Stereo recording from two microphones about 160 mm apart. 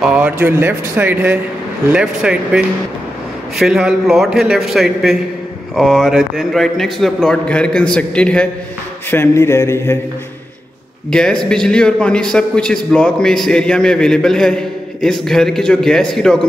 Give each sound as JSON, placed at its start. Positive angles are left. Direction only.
{"t": 0.0, "sound": "a man's voice", "side_deg": -5}
{"t": 7.9, "sound": "mantra", "side_deg": 5}
{"t": 11.1, "sound": "a man's voice", "side_deg": 5}